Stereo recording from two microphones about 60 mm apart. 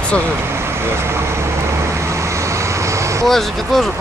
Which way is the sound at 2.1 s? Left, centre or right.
Right.